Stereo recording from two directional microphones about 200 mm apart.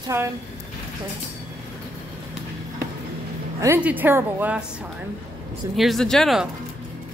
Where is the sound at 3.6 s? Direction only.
10° right (ahead or behind).